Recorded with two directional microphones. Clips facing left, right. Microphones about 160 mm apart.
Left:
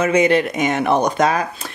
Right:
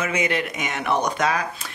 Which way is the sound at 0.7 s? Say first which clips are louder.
Left 5 dB; 45° left (ahead or behind).